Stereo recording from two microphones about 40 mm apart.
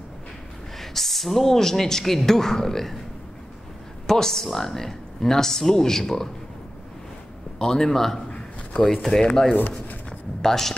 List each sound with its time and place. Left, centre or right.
0.7 s speech: centre
4.1 s speech: centre
7.5 s speech: centre
9.6 s a sound: left
10.4 s speech: centre